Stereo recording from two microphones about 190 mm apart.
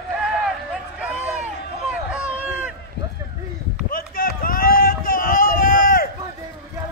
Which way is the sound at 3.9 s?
50° left (ahead or behind).